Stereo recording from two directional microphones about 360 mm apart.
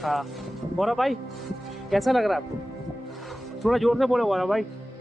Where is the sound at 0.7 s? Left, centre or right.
Centre.